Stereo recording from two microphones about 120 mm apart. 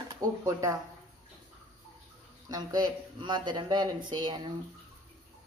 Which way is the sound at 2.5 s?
35° right (ahead or behind).